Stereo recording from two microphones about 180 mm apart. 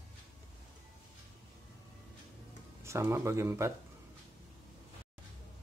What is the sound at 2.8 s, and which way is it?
Speech, 15° right (ahead or behind).